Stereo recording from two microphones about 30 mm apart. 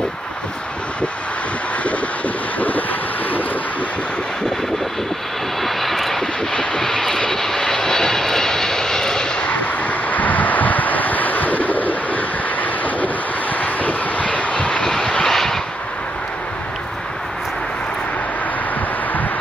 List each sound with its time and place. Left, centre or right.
5.6 s vehicle: centre
6.5 s vehicle: left
6.8 s vehicle: centre
9.5 s vehicle: left
13.6 s vehicle: left
14.2 s vehicle: left
14.8 s vehicle: centre